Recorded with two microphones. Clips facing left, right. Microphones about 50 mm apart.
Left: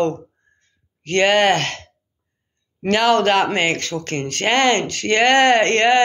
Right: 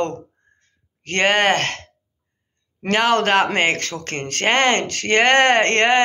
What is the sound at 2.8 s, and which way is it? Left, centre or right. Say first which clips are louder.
Speech: left 2 dB; right.